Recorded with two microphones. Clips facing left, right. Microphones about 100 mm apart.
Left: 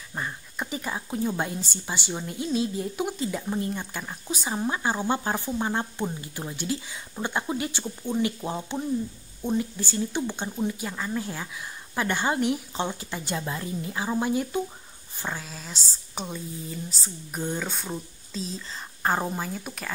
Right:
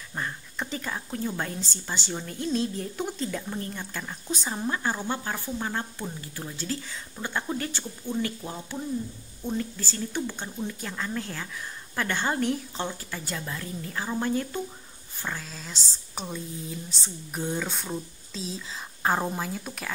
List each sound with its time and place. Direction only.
0.1 s a woman's voice: 10° left (ahead or behind)